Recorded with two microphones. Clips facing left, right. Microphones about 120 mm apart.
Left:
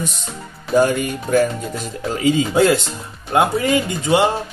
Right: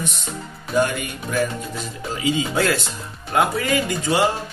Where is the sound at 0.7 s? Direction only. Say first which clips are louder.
Left 5 dB; 35° left (ahead or behind).